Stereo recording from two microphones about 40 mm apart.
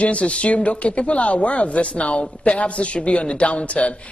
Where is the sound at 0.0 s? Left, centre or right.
Left.